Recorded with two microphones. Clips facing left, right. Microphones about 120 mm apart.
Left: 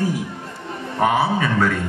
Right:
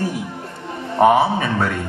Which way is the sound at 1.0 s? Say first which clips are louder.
Right 4 dB; 25° right (ahead or behind).